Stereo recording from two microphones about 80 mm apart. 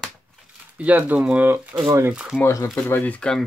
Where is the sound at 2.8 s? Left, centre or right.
Left.